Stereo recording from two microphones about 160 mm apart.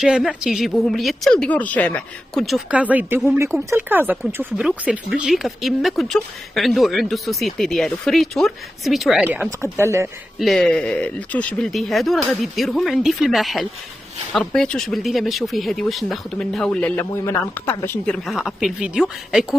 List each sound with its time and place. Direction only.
0.0 s speech: 5° right (ahead or behind)
9.3 s speech: 15° right (ahead or behind)
10.4 s speech: 5° left (ahead or behind)
18.1 s speech: centre (ahead or behind)